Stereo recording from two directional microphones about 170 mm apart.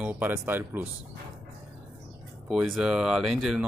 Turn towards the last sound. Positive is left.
turn(degrees=0)  # may be behind; listen again after turning